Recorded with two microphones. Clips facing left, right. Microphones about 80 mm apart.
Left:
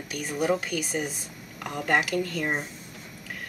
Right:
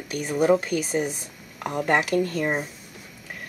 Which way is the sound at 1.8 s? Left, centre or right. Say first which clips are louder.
Right 3 dB; right.